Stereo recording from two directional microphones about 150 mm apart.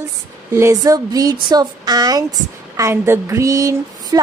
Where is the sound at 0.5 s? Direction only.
20° right (ahead or behind).